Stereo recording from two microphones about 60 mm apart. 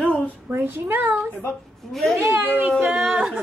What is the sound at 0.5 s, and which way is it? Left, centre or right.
Speech, right.